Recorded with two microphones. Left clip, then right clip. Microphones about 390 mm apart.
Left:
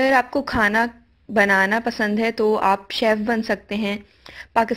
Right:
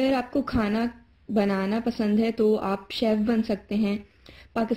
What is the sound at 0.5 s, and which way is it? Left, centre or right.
A woman's voice, centre.